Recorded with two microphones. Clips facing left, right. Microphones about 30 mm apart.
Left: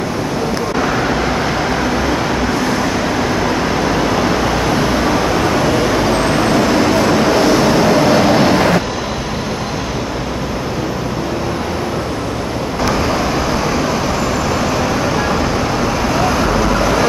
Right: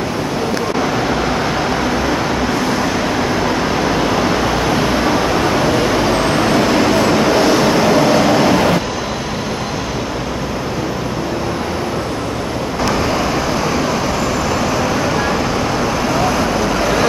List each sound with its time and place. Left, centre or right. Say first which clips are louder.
2.8 s vehicle: even; centre
14.8 s vehicle: even; centre
16.3 s vehicle: left 1 dB; centre